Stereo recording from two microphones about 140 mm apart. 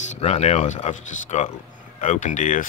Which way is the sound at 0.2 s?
50° left (ahead or behind).